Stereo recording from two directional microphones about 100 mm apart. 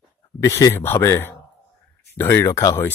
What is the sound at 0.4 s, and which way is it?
Speech, 30° left (ahead or behind).